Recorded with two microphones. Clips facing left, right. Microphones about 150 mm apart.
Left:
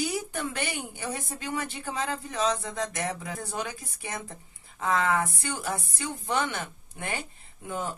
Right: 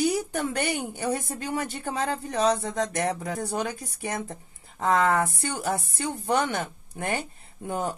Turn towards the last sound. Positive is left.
turn(degrees=-40)  # may be behind; listen again after turning